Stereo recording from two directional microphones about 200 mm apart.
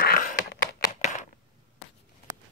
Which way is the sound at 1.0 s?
35° left (ahead or behind).